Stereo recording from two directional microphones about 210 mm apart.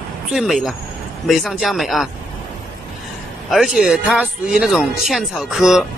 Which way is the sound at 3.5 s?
Centre (ahead or behind).